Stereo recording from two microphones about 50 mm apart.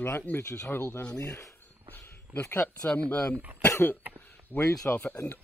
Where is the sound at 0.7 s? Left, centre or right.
Left.